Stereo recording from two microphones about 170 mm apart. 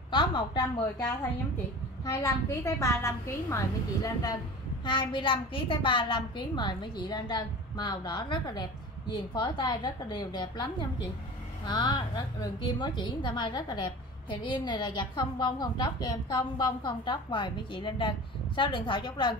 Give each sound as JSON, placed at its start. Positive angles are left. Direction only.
{"t": 0.1, "sound": "a woman's voice", "side_deg": 30}
{"t": 2.0, "sound": "a woman's voice", "side_deg": 20}